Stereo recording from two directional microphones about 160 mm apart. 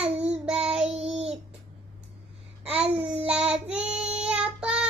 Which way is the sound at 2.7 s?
40° right (ahead or behind).